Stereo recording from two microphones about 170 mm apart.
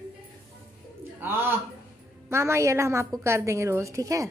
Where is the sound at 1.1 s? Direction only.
15° right (ahead or behind).